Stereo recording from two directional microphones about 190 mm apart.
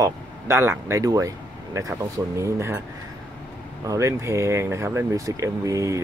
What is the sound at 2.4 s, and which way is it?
Speech, 15° right (ahead or behind).